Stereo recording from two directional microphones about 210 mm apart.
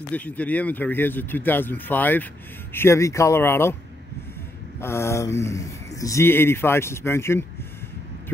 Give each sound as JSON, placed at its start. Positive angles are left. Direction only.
{"t": 0.1, "sound": "speech", "side_deg": 5}
{"t": 4.7, "sound": "speech", "side_deg": 10}